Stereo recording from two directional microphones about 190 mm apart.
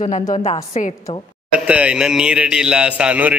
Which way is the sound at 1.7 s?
5° right (ahead or behind).